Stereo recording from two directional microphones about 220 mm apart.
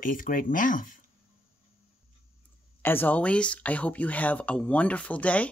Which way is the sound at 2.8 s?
10° left (ahead or behind).